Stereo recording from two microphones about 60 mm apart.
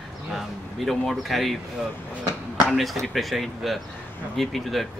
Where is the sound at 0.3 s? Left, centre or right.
Centre.